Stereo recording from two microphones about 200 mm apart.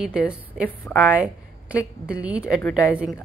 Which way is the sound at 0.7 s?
10° left (ahead or behind).